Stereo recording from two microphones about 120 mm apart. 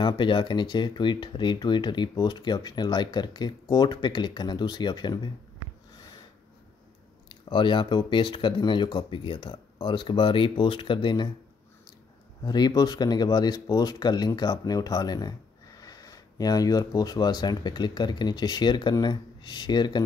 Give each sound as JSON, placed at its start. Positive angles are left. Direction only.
{"t": 0.0, "sound": "speech", "side_deg": 40}
{"t": 7.2, "sound": "speech", "side_deg": 40}
{"t": 12.4, "sound": "speech", "side_deg": 35}